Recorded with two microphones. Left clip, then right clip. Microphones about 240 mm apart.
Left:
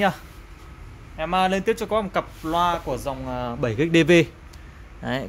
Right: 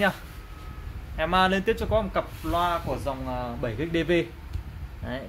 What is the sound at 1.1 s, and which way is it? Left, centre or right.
Speech, centre.